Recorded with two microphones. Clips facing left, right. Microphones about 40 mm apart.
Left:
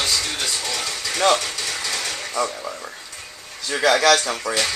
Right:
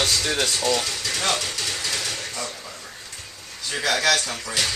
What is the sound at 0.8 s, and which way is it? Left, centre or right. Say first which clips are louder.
Speech: left 1 dB; left.